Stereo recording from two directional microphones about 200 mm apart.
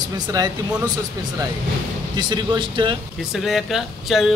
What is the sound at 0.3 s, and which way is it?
Speech, 20° right (ahead or behind).